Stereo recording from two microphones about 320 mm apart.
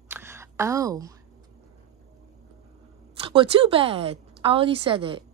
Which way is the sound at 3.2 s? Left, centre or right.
Centre.